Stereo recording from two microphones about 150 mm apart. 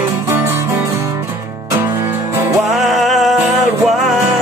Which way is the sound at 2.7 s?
Centre (ahead or behind).